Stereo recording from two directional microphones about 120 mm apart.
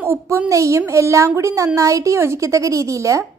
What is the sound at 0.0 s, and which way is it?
Speech, 20° right (ahead or behind).